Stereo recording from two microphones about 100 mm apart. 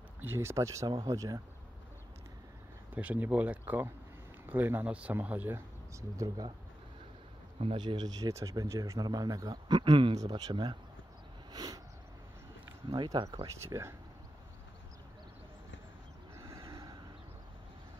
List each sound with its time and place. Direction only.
0.2 s speech: 25° right (ahead or behind)
2.9 s speech: 15° right (ahead or behind)
5.9 s speech: 35° right (ahead or behind)
7.7 s speech: 50° right (ahead or behind)
11.5 s a sound: 40° right (ahead or behind)
12.9 s speech: 45° right (ahead or behind)
13.6 s speech: 25° right (ahead or behind)
16.3 s neigh: 35° right (ahead or behind)